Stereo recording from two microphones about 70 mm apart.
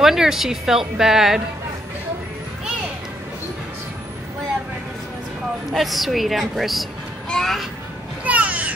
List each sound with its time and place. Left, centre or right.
0.0 s speech: centre
5.7 s speech: centre
8.2 s a sound: right